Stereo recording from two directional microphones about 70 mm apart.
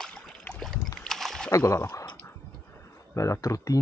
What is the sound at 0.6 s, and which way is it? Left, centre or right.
Boat, centre.